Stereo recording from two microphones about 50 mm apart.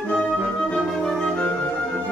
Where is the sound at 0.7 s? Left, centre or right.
Centre.